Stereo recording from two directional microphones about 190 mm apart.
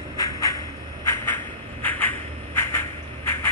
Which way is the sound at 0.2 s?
20° left (ahead or behind).